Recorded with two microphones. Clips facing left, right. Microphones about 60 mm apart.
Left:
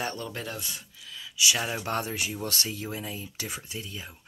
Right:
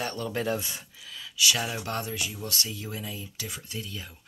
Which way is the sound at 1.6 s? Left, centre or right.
Left.